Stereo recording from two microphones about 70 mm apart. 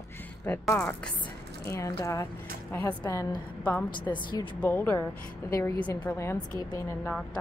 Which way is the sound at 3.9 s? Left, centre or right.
Left.